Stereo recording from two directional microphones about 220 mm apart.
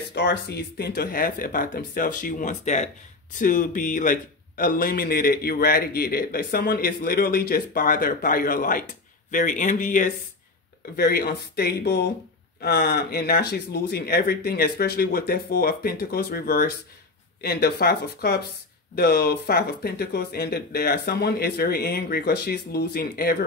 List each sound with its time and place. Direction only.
0.1 s speech: 50° left (ahead or behind)